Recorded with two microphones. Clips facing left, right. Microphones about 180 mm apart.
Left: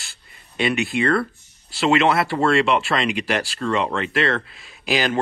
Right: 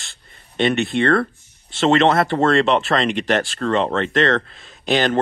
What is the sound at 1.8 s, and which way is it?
Speech, 40° right (ahead or behind).